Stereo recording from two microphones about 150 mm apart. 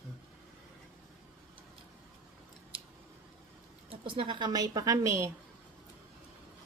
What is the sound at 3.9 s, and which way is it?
A woman's voice, 35° right (ahead or behind).